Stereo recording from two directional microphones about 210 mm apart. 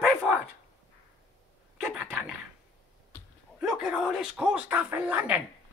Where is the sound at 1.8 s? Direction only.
5° right (ahead or behind).